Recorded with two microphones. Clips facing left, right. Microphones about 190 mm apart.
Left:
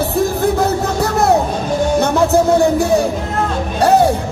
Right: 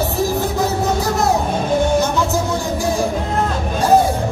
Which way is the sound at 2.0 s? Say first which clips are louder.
Left 5 dB; 60° left (ahead or behind).